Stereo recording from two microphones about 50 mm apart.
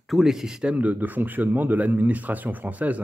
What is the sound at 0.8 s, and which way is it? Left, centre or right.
Speech, right.